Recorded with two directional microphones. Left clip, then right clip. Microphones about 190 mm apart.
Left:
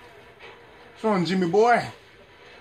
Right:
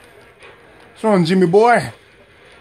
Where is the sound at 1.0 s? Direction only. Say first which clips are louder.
Right 9 dB; 60° right (ahead or behind).